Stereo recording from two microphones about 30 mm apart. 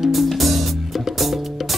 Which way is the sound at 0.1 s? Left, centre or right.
Centre.